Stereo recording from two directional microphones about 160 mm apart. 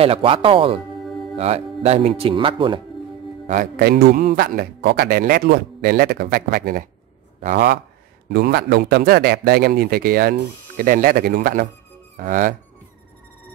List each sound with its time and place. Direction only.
0.0 s speech: 35° right (ahead or behind)
3.7 s speech: 75° right (ahead or behind)
7.4 s speech: 80° right
8.3 s speech: 90° right; by 12.5 s 55° right (ahead or behind)